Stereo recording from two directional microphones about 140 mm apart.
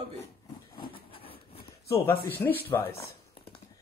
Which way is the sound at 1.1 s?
40° left (ahead or behind).